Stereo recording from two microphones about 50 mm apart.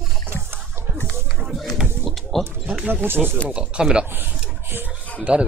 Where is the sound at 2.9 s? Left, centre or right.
Right.